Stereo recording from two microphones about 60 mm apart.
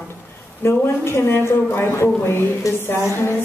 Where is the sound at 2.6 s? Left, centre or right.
Left.